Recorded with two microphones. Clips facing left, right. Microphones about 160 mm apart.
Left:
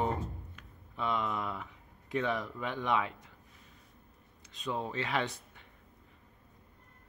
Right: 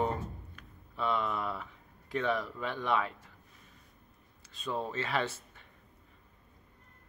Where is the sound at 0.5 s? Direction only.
15° left (ahead or behind).